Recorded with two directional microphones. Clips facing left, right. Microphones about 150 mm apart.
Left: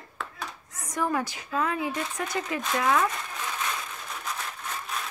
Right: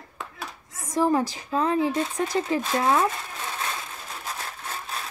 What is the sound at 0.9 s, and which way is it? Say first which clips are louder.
Speech: right 6 dB; 35° right (ahead or behind).